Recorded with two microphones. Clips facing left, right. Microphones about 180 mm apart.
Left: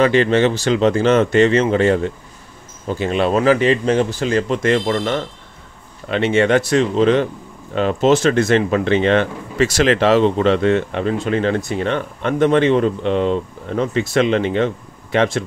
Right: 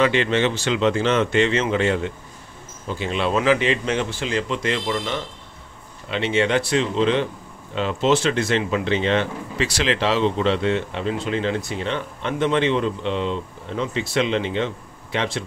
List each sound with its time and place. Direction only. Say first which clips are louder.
0.0 s speech: left 5 dB; 40° left (ahead or behind)